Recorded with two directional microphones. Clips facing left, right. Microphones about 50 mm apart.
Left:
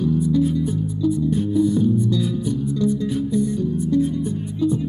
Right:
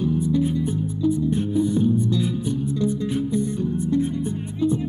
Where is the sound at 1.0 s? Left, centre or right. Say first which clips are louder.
Left 1 dB; right.